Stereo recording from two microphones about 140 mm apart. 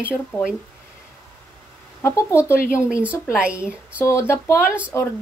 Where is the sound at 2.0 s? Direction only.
20° left (ahead or behind).